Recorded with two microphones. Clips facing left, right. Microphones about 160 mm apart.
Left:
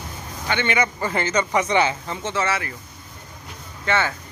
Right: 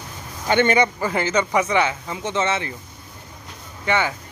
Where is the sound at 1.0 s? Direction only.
10° right (ahead or behind).